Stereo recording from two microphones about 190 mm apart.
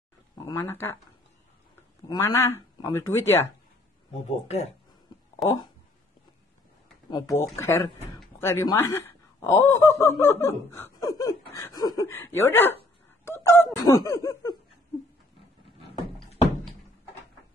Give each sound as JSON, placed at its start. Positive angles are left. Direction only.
{"t": 0.5, "sound": "speech", "side_deg": 15}
{"t": 2.0, "sound": "speech", "side_deg": 15}
{"t": 4.3, "sound": "speech", "side_deg": 35}
{"t": 5.4, "sound": "speech", "side_deg": 0}
{"t": 7.1, "sound": "speech", "side_deg": 20}
{"t": 13.2, "sound": "fowl", "side_deg": 10}
{"t": 13.7, "sound": "speech", "side_deg": 15}